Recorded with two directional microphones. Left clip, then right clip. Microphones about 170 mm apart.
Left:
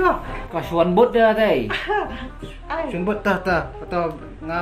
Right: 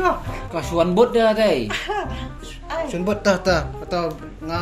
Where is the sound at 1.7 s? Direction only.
20° right (ahead or behind).